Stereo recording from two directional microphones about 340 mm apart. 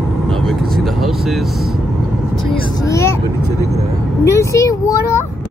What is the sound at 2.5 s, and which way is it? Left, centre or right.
Speech, centre.